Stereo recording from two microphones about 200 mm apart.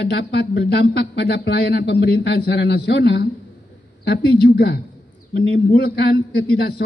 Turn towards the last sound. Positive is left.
turn(degrees=50)  # may be behind; listen again after turning